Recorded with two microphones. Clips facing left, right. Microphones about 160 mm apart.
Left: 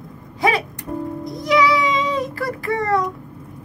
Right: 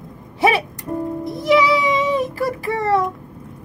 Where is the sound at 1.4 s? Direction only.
20° right (ahead or behind).